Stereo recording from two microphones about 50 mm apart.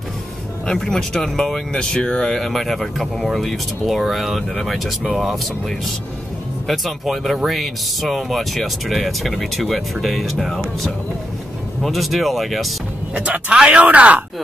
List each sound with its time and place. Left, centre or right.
0.7 s speech: centre
2.4 s speech: centre
13.1 s speech: right